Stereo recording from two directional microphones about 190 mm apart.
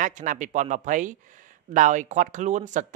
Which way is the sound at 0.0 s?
45° right (ahead or behind).